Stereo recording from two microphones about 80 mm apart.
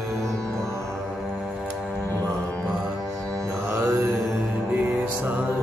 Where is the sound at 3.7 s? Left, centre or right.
Right.